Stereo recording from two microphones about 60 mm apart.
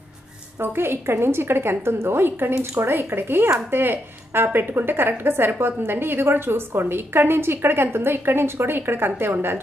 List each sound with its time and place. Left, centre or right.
0.6 s speech: right